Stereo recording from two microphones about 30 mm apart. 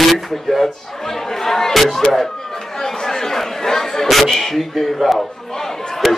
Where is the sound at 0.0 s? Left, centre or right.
Centre.